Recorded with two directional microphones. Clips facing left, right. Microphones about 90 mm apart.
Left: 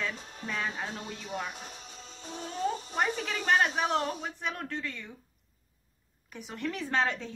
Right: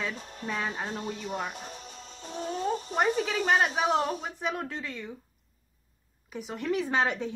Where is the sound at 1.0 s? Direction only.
20° right (ahead or behind).